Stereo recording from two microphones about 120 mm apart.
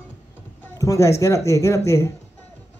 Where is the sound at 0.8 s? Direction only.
25° left (ahead or behind).